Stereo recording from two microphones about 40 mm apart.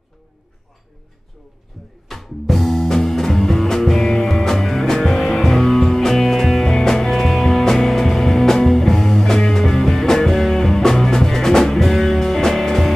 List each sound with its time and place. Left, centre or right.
2.0 s music: centre